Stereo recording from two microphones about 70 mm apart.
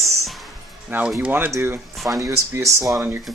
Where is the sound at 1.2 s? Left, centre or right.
Right.